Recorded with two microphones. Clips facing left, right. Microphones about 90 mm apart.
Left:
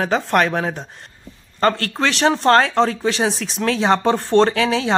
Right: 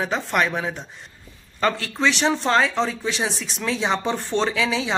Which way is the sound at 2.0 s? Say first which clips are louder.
Left 1 dB; 50° left (ahead or behind).